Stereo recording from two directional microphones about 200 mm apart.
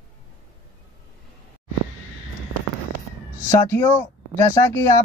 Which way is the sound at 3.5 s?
15° left (ahead or behind).